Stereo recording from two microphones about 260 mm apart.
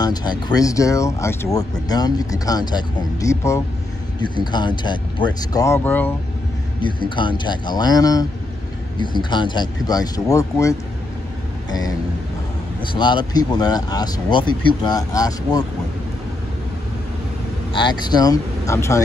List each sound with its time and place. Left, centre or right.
0.0 s speech: centre
6.8 s speech: centre
12.9 s speech: centre
17.7 s speech: centre